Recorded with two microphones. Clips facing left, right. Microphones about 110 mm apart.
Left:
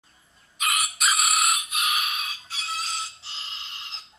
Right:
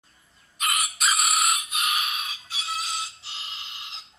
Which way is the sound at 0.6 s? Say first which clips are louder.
Even; centre (ahead or behind).